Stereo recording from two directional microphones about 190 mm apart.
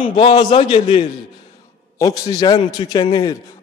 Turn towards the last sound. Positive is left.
turn(degrees=20)  # may be behind; listen again after turning